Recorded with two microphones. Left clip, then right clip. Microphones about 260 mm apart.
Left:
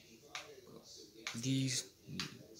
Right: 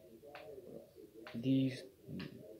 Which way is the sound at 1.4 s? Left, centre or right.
Centre.